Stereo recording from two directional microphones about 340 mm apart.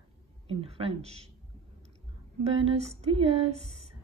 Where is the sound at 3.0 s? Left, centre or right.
Centre.